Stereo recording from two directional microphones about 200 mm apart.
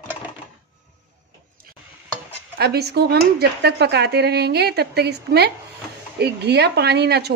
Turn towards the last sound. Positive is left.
turn(degrees=-55)  # may be behind; listen again after turning